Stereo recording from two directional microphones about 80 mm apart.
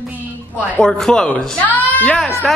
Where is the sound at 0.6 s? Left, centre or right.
Centre.